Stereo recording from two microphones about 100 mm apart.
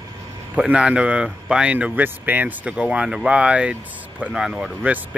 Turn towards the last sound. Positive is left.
turn(degrees=-5)  # may be behind; listen again after turning